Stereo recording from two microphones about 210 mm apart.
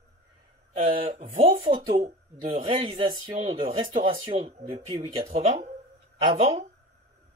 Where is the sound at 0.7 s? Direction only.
35° right (ahead or behind).